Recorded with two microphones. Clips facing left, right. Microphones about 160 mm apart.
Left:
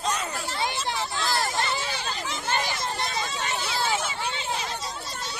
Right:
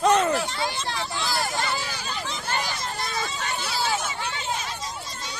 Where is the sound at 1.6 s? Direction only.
20° left (ahead or behind).